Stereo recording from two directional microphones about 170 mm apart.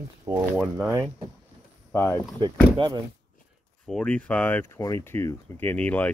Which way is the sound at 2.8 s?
25° right (ahead or behind).